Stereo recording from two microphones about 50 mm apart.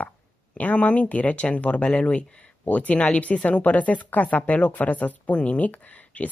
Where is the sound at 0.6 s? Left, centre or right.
Left.